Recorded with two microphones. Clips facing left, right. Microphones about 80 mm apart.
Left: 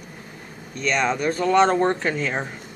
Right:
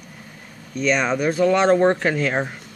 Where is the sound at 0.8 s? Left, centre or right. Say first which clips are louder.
Right 2 dB; centre.